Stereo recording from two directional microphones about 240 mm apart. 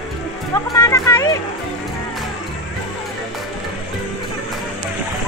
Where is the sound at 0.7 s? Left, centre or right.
Centre.